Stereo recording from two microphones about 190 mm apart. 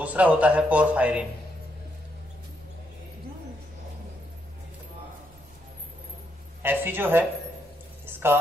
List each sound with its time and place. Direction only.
0.0 s a man's voice: 5° right (ahead or behind)
6.6 s a man's voice: 10° right (ahead or behind)